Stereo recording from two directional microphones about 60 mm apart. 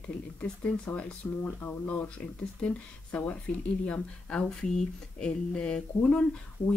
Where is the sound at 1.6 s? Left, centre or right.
Left.